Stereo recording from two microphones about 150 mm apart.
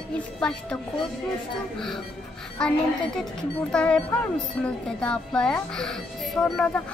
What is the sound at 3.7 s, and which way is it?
Speech, 5° left (ahead or behind).